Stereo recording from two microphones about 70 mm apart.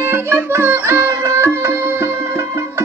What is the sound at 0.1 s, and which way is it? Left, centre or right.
Music, right.